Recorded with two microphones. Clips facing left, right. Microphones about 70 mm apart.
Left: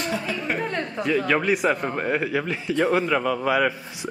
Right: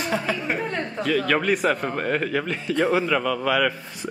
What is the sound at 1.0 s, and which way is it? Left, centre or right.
A woman's voice, centre.